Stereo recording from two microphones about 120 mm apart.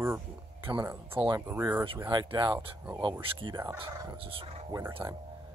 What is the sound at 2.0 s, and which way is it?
Speech, 40° right (ahead or behind).